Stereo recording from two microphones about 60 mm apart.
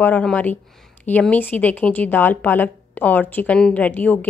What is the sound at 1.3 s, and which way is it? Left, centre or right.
A woman's voice, left.